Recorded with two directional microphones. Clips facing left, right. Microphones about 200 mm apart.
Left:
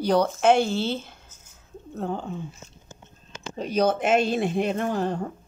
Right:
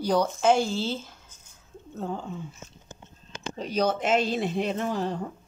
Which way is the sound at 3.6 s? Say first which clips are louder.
Left 3 dB; 55° left (ahead or behind).